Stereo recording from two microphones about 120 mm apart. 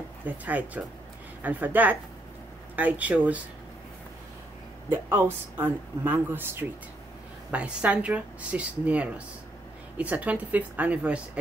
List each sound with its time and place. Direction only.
0.2 s speech: 15° right (ahead or behind)
4.8 s speech: 20° right (ahead or behind)